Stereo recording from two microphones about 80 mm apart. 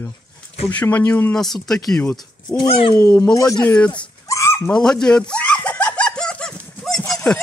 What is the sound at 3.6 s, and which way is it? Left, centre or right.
Speech, centre.